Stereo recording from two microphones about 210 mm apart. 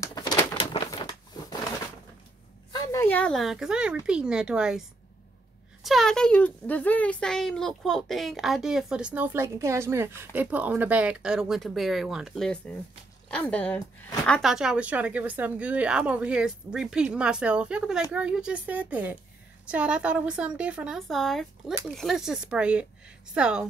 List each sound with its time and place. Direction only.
0.0 s a sound: 20° left (ahead or behind)
2.7 s speech: 15° left (ahead or behind); by 4.8 s 5° right (ahead or behind)
5.9 s speech: centre (ahead or behind)